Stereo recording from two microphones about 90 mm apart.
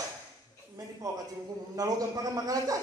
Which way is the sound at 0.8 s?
45° right (ahead or behind).